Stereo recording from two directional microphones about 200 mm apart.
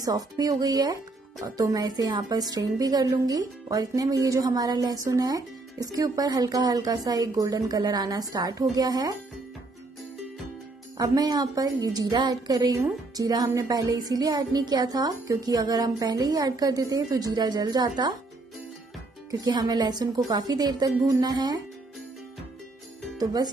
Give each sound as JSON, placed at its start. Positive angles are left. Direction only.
{"t": 0.0, "sound": "a woman's voice", "side_deg": -20}
{"t": 11.0, "sound": "a woman's voice", "side_deg": -20}
{"t": 19.4, "sound": "a woman's voice", "side_deg": -20}
{"t": 23.1, "sound": "speech", "side_deg": -20}